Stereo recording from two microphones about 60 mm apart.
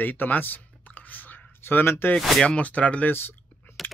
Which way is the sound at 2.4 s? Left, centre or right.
Left.